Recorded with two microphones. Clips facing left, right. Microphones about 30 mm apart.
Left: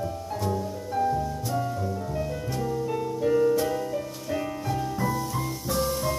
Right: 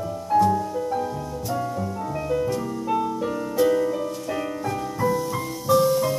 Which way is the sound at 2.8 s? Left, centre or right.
Right.